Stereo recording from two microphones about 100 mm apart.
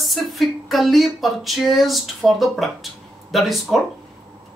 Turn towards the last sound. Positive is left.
turn(degrees=0)  # may be behind; listen again after turning